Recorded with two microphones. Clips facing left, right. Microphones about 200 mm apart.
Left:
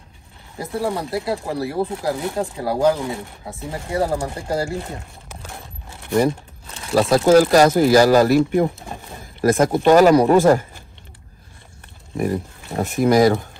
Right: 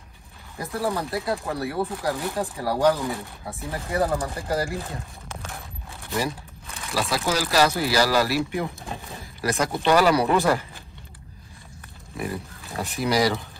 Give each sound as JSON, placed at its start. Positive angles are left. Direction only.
{"t": 0.7, "sound": "speech", "side_deg": 30}
{"t": 2.1, "sound": "speech", "side_deg": 15}
{"t": 3.9, "sound": "speech", "side_deg": 30}
{"t": 5.4, "sound": "a sound", "side_deg": 15}
{"t": 6.0, "sound": "speech", "side_deg": 50}
{"t": 12.7, "sound": "speech", "side_deg": 50}